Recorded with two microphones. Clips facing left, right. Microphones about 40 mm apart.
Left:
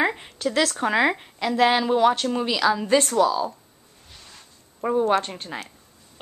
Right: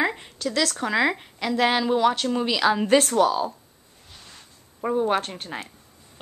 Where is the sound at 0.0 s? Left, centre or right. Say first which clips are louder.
Left 2 dB; centre.